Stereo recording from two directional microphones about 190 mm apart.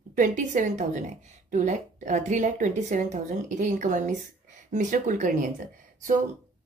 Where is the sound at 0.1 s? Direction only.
45° right (ahead or behind).